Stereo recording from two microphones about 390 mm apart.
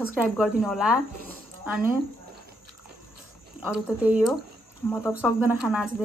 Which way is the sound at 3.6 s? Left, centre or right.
Centre.